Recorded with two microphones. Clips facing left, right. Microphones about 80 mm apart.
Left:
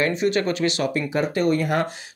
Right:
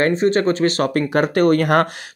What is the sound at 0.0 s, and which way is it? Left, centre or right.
Speech, right.